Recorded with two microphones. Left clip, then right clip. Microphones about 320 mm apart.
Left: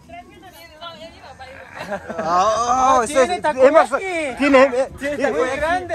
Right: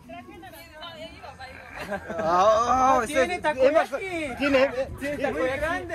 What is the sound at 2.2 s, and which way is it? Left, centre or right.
Speech, centre.